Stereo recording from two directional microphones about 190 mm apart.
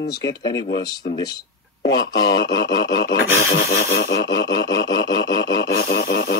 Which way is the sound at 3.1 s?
55° left (ahead or behind).